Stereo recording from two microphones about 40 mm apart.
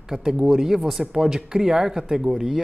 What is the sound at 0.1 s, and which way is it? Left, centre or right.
Speech, centre.